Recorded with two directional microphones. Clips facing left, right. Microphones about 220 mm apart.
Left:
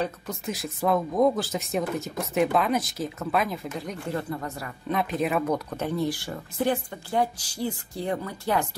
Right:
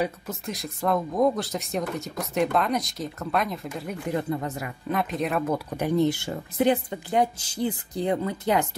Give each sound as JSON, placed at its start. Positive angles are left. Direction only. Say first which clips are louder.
{"t": 0.0, "sound": "speech", "louder": "right 1 dB", "side_deg": 0}
{"t": 4.0, "sound": "speech", "louder": "right 5 dB", "side_deg": -20}
{"t": 4.8, "sound": "speech", "louder": "left 1 dB", "side_deg": 0}